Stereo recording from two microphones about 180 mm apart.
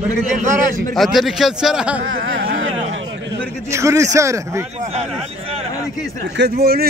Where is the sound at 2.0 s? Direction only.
90° right.